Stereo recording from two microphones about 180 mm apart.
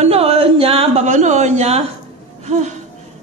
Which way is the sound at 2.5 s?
40° right (ahead or behind).